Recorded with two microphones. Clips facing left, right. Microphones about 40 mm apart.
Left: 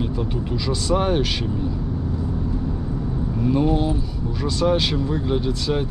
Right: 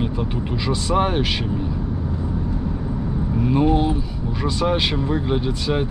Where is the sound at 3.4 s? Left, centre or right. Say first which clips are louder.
Right 2 dB; centre.